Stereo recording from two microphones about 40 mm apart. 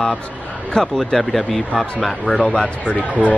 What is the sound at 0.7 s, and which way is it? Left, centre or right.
Speech, centre.